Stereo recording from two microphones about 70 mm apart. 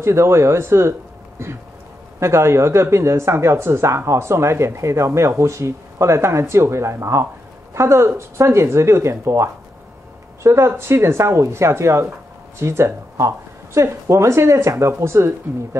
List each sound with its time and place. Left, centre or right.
0.0 s speech: right
2.1 s speech: right